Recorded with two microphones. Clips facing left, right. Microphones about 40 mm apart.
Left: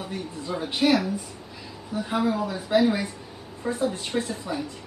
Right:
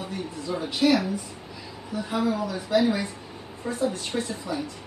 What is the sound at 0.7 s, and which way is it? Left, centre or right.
A woman's voice, centre.